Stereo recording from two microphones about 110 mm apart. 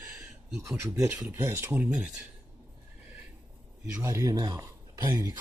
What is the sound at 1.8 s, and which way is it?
Speech, 10° right (ahead or behind).